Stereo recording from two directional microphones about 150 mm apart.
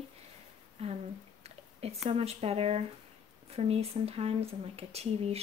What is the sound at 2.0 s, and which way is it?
Speech, 40° right (ahead or behind).